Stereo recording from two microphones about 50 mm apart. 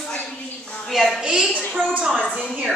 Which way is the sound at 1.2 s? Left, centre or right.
Centre.